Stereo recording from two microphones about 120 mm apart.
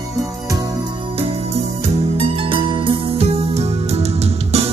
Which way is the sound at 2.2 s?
50° right (ahead or behind).